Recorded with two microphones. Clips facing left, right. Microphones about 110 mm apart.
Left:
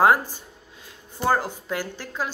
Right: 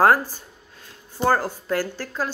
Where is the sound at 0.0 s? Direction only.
15° left (ahead or behind).